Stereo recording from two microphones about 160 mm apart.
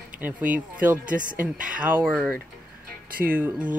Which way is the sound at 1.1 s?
55° right (ahead or behind).